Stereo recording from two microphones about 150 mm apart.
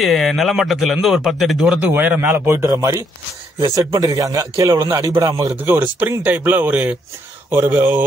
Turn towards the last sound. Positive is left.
turn(degrees=-15)  # may be behind; listen again after turning